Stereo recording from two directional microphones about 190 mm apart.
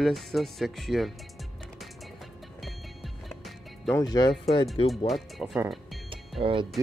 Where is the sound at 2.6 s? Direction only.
Centre (ahead or behind).